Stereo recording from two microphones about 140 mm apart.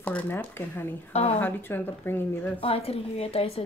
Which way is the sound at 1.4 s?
15° left (ahead or behind).